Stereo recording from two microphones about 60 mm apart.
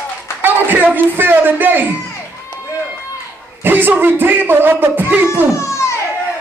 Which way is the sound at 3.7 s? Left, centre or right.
Right.